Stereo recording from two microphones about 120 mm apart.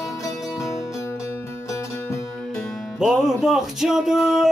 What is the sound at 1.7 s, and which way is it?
Music, 25° left (ahead or behind).